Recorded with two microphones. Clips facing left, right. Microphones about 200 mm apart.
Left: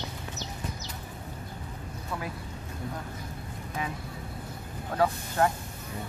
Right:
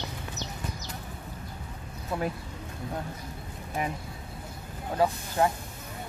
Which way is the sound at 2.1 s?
25° right (ahead or behind).